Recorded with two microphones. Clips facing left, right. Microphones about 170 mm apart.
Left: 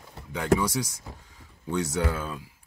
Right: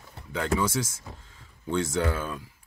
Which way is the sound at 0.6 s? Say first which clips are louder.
Right 1 dB; 15° left (ahead or behind).